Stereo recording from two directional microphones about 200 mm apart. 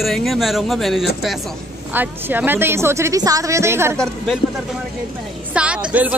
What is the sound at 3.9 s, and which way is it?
Speech, centre (ahead or behind).